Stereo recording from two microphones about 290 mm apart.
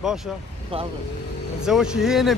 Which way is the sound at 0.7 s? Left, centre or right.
Centre.